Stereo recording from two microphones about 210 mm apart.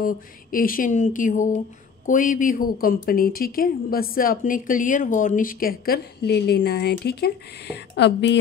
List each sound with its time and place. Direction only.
0.0 s speech: 40° left (ahead or behind)